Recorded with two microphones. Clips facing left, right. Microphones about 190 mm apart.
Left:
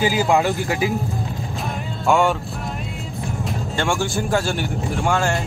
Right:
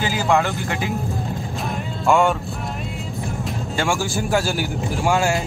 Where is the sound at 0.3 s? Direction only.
Centre (ahead or behind).